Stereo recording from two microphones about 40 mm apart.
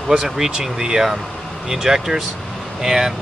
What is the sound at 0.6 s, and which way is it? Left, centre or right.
Speech, centre.